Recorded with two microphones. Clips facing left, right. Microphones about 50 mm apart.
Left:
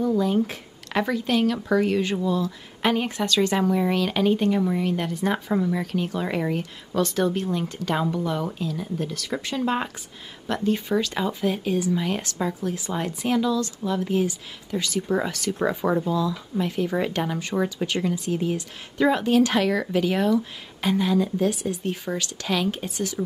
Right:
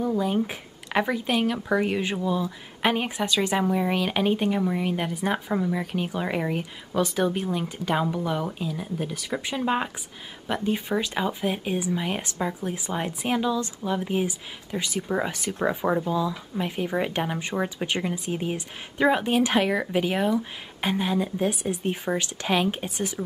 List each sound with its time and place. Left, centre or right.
0.0 s speech: centre
12.6 s speech: right
16.1 s speech: right